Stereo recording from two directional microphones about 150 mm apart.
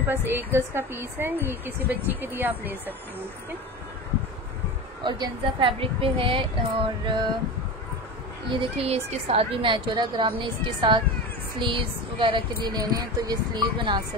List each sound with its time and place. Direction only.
0.0 s a woman's voice: 15° right (ahead or behind)
5.0 s speech: 30° right (ahead or behind)
8.5 s speech: 35° right (ahead or behind)